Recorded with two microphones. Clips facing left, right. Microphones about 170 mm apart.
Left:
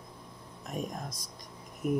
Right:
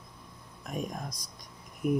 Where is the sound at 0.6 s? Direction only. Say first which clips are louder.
Right 1 dB; centre (ahead or behind).